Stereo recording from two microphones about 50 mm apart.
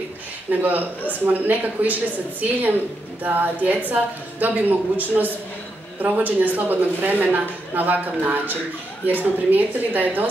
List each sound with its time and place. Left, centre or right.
0.5 s a woman's voice: right
3.3 s a woman's voice: right